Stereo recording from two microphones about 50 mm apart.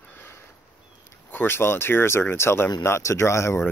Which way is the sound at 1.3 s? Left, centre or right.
Left.